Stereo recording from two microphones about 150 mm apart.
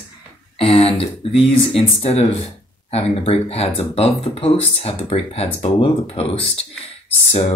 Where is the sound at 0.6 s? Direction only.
40° left (ahead or behind).